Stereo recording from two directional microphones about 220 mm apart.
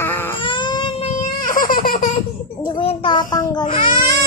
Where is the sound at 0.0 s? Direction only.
10° left (ahead or behind).